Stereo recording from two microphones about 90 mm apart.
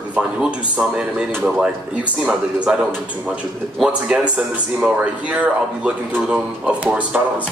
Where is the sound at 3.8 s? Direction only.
10° right (ahead or behind).